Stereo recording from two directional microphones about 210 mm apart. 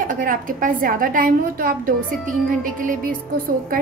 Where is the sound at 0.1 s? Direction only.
40° right (ahead or behind).